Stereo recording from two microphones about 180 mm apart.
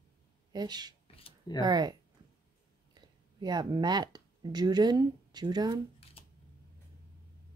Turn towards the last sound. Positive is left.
turn(degrees=-25)  # may be behind; listen again after turning